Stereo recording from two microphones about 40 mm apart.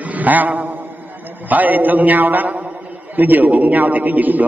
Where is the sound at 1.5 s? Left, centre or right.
Right.